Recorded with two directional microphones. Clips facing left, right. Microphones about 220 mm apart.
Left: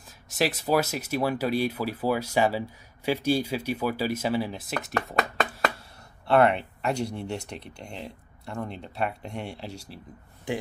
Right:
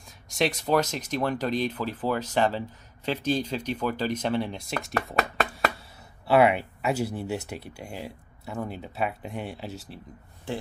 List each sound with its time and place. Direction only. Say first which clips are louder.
0.3 s speech: even; 5° left (ahead or behind)